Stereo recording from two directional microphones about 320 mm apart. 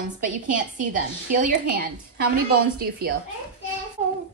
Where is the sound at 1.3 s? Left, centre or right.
Right.